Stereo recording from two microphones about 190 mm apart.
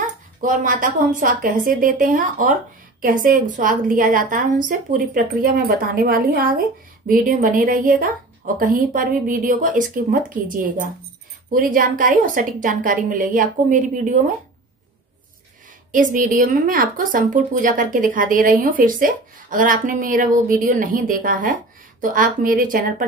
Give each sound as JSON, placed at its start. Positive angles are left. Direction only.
{"t": 0.0, "sound": "a woman's voice", "side_deg": -45}
{"t": 15.9, "sound": "a woman's voice", "side_deg": -45}